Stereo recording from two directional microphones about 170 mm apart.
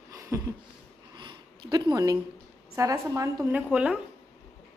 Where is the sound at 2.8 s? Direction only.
20° right (ahead or behind).